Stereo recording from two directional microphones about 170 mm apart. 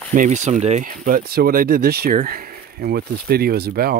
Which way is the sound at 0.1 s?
50° right (ahead or behind).